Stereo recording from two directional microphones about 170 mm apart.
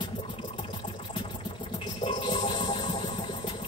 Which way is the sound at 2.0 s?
30° left (ahead or behind).